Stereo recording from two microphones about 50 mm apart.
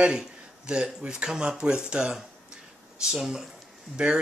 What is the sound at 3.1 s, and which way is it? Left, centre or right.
Speech, centre.